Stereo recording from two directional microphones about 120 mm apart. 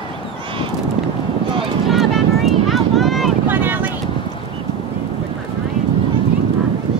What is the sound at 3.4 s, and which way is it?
Boat, 15° right (ahead or behind).